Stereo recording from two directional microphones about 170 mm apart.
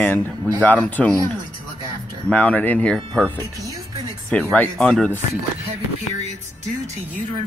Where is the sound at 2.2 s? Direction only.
10° left (ahead or behind).